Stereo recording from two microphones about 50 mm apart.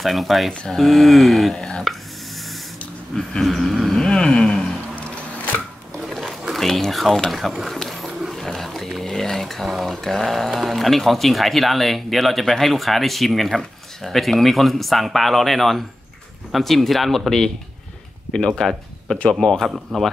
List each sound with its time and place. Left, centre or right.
0.0 s speech: centre
1.6 s speech: centre
3.2 s speech: centre
4.9 s music: left
5.9 s a sound: centre
9.0 s speech: centre